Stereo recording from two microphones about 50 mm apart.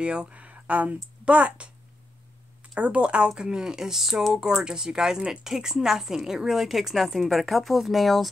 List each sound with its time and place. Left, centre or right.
0.0 s speech: right
2.7 s speech: right; by 8.3 s centre